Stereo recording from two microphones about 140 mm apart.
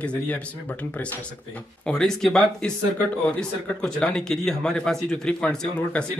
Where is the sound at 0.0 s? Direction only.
10° left (ahead or behind).